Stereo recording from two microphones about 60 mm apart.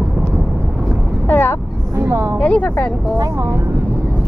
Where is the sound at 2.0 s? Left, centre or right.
Right.